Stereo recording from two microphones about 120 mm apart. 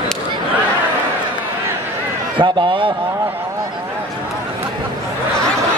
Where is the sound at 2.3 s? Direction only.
45° right (ahead or behind).